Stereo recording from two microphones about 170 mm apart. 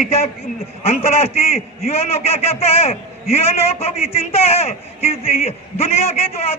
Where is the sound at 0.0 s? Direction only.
40° left (ahead or behind).